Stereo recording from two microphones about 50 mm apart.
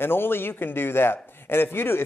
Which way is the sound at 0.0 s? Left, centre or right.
Left.